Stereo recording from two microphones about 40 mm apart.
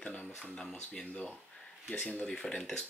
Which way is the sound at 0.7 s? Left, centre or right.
Left.